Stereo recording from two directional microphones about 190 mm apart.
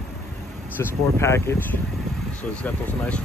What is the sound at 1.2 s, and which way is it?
Speech, 15° left (ahead or behind).